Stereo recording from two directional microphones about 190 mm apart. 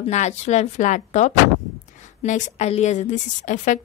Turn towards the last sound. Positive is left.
turn(degrees=40)  # may be behind; listen again after turning